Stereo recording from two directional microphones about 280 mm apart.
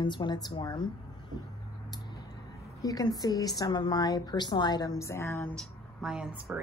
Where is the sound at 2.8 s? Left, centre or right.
Centre.